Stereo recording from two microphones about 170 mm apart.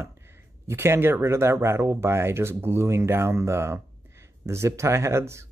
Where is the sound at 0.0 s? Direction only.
15° right (ahead or behind).